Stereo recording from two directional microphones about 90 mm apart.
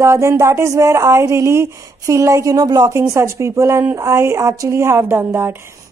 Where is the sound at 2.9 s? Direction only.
30° right (ahead or behind).